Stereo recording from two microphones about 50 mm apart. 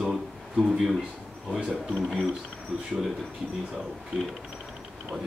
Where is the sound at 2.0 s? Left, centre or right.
Centre.